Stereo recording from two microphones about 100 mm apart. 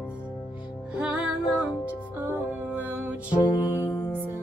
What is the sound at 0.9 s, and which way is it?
Music, 10° right (ahead or behind).